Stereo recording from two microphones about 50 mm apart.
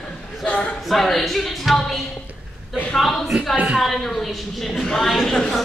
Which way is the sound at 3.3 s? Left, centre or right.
Centre.